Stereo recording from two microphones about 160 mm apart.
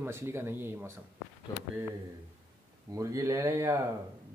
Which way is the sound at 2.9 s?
20° right (ahead or behind).